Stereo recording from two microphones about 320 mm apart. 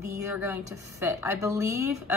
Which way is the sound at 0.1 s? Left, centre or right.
Centre.